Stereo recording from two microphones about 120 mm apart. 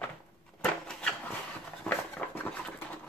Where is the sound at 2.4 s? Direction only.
15° left (ahead or behind).